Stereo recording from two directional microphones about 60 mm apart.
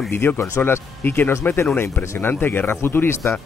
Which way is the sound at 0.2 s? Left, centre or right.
Left.